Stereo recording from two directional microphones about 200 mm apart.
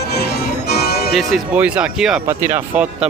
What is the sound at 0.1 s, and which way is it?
Music, 55° left (ahead or behind).